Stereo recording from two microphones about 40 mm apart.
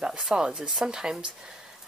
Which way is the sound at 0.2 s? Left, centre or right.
Centre.